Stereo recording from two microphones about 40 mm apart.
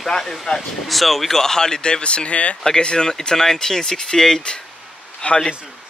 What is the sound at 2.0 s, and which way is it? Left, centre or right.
Speech, left.